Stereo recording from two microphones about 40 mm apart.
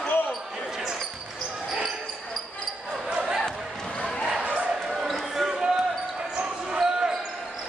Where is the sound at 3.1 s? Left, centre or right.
Right.